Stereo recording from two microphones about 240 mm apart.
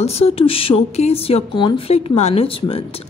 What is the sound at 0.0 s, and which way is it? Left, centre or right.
Speech, left.